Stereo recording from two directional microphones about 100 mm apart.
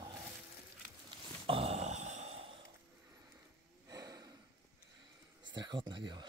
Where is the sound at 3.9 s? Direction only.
40° right (ahead or behind).